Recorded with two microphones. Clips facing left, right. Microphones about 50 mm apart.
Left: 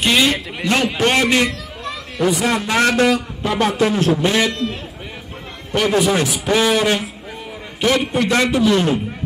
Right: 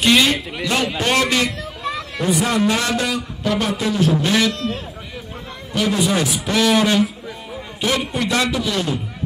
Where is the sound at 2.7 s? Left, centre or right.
Left.